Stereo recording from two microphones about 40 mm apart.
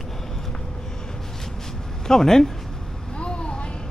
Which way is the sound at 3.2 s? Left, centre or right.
Left.